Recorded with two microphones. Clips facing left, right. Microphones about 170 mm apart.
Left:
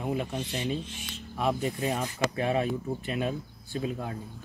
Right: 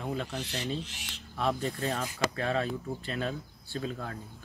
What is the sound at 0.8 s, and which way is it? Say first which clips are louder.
Speech: left 4 dB; 80° right.